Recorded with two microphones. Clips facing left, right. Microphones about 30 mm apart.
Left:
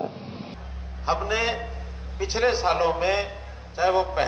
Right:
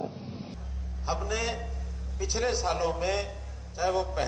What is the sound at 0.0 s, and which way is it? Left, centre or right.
Vehicle, left.